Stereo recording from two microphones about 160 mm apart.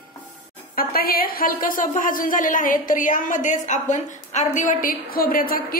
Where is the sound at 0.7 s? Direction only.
65° left (ahead or behind).